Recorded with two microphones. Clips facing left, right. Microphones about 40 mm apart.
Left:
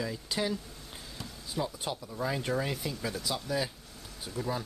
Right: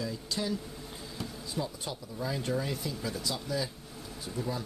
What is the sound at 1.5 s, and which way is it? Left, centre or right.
Speech, left.